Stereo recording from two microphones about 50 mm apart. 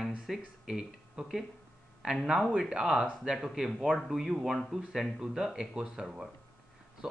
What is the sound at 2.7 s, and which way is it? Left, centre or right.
Speech, centre.